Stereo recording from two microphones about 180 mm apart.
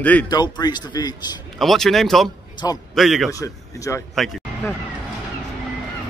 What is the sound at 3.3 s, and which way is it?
Speech, 15° left (ahead or behind).